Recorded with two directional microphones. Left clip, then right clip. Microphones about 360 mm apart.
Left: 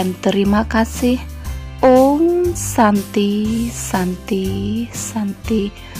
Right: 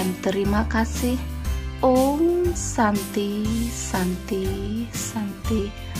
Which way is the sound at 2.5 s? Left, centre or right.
Left.